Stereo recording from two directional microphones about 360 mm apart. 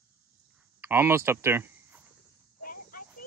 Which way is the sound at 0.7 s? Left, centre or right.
Centre.